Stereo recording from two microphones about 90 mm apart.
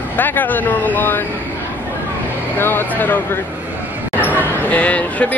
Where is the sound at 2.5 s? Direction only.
25° left (ahead or behind).